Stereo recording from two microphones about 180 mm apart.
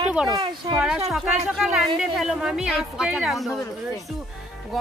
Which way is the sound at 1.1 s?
Centre (ahead or behind).